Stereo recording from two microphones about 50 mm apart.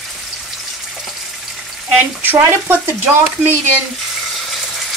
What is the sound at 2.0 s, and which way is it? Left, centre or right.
Speech, right.